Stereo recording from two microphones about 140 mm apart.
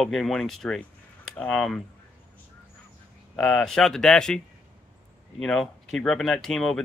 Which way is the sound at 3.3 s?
5° left (ahead or behind).